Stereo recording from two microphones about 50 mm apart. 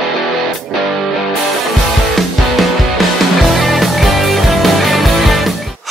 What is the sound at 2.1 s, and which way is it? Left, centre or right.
Music, centre.